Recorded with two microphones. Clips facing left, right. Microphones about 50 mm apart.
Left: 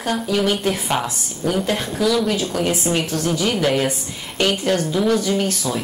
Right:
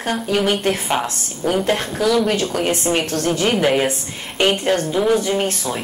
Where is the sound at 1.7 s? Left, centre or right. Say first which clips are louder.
Right 1 dB; right.